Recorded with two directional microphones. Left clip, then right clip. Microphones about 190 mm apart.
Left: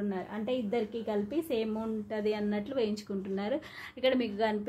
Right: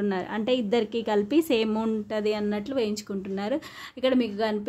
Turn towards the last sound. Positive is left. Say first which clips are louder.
# right 4 dB
turn(degrees=-40)  # may be behind; listen again after turning